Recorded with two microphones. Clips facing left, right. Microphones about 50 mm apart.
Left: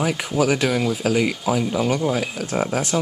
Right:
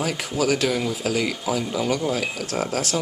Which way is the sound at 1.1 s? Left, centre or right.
Centre.